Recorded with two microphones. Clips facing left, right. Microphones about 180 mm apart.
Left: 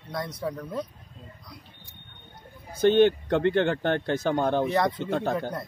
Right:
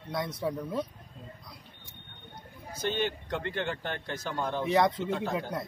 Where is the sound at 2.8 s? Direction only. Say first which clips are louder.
Left 12 dB; 60° left (ahead or behind).